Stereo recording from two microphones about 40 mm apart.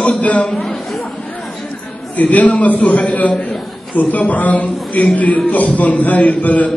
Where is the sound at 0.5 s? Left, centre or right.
Centre.